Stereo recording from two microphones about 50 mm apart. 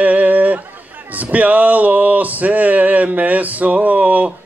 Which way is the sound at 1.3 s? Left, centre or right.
Right.